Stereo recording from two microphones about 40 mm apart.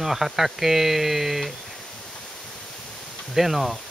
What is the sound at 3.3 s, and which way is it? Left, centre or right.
Speech, centre.